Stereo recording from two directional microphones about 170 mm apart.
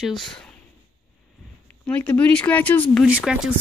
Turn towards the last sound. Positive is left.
turn(degrees=-5)  # may be behind; listen again after turning